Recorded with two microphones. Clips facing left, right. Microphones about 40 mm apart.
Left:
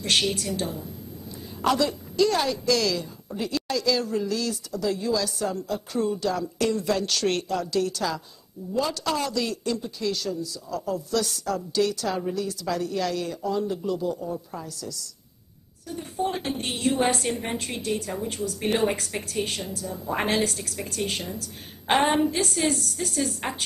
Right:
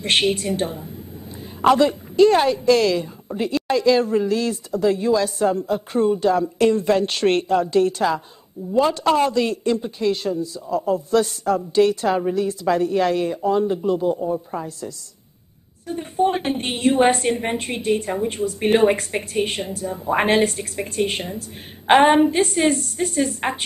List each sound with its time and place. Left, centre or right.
0.0 s a woman's voice: right